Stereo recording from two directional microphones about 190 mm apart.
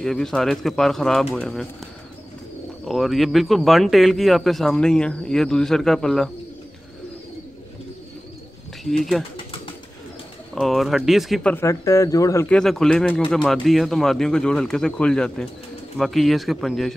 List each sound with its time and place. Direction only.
0.0 s speech: 5° left (ahead or behind)
2.9 s speech: centre (ahead or behind)
8.8 s speech: centre (ahead or behind)
10.5 s speech: centre (ahead or behind)
11.5 s speech: 15° left (ahead or behind)
12.4 s speech: 5° left (ahead or behind)